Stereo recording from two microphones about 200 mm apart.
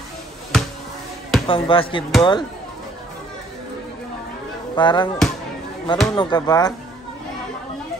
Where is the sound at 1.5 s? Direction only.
25° left (ahead or behind).